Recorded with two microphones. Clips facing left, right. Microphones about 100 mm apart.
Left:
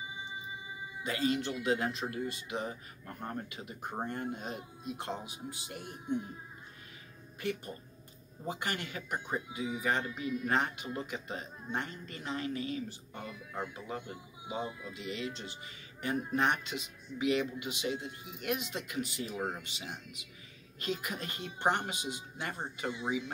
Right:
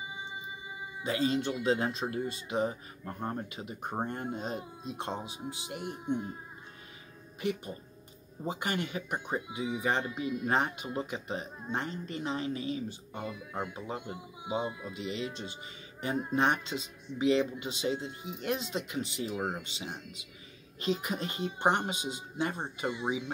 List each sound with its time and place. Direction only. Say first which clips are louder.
1.0 s speech: right 3 dB; 25° right (ahead or behind)
7.3 s speech: right 3 dB; 20° right (ahead or behind)